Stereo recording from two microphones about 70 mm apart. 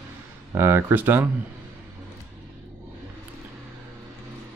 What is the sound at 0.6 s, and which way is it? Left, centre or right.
Speech, right.